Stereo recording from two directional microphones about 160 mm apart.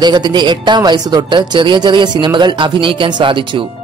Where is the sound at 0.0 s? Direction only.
25° right (ahead or behind).